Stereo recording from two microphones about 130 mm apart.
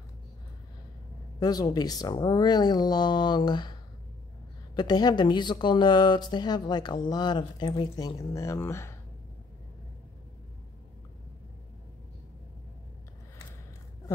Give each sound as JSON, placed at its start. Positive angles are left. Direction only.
{"t": 1.4, "sound": "speech", "side_deg": 30}
{"t": 4.7, "sound": "speech", "side_deg": 30}